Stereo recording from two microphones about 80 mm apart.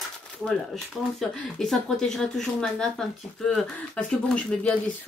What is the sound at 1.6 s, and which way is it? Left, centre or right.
Speech, centre.